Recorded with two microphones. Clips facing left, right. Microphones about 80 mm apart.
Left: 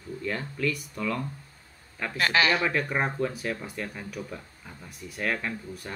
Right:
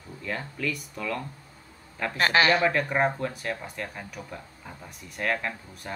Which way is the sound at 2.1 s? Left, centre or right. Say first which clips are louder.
Right 2 dB; right.